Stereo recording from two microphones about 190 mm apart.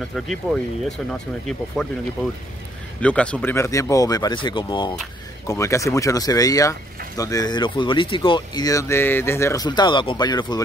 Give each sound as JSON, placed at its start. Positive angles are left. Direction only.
{"t": 0.1, "sound": "speech", "side_deg": 0}
{"t": 3.0, "sound": "speech", "side_deg": 5}